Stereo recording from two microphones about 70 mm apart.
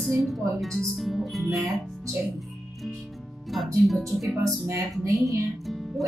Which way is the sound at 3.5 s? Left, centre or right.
Centre.